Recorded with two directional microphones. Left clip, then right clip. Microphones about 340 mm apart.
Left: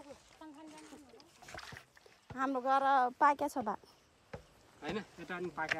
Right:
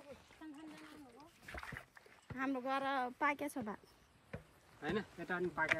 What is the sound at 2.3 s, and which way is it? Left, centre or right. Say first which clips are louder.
A woman's voice: left 7 dB; centre.